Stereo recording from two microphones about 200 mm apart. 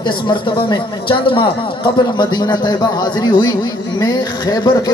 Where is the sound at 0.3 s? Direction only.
25° left (ahead or behind).